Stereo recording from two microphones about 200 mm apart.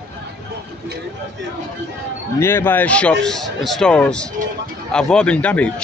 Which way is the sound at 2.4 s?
10° left (ahead or behind).